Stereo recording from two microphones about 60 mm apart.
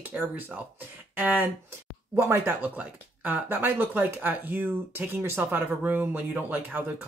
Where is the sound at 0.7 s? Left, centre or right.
Right.